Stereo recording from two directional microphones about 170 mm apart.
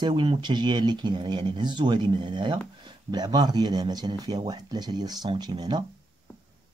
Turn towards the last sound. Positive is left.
turn(degrees=-25)  # may be behind; listen again after turning